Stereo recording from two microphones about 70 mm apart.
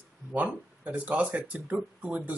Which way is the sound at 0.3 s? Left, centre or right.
Right.